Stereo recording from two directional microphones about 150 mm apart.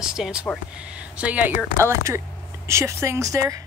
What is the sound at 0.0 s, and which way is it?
Speech, 5° right (ahead or behind).